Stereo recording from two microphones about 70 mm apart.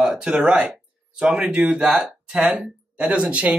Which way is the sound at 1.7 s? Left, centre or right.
Centre.